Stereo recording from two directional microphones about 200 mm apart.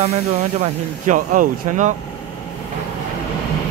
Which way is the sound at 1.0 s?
40° right (ahead or behind).